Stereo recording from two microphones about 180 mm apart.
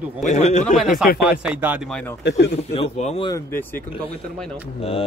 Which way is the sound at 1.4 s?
10° right (ahead or behind).